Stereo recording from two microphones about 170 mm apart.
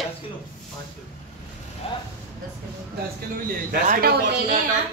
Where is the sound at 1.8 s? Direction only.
35° left (ahead or behind).